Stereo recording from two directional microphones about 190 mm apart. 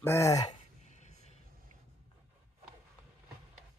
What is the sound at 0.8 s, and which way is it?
Vehicle, 40° left (ahead or behind).